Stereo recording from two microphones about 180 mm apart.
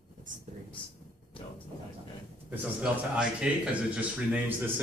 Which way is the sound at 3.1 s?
5° right (ahead or behind).